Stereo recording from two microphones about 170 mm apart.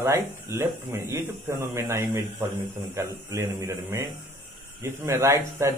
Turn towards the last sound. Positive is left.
turn(degrees=-15)  # may be behind; listen again after turning